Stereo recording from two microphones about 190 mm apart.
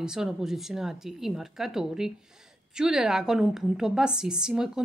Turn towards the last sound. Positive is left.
turn(degrees=-5)  # may be behind; listen again after turning